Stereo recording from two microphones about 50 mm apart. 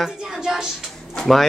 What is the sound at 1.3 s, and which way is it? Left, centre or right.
Speech, centre.